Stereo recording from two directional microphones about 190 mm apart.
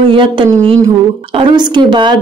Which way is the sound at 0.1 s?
25° right (ahead or behind).